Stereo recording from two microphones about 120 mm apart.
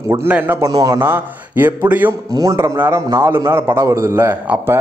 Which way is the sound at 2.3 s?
30° right (ahead or behind).